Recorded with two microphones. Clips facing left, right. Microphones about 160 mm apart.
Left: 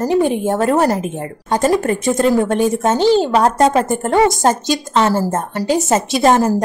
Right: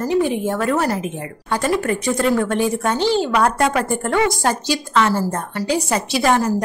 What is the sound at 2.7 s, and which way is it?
Speech, 25° left (ahead or behind).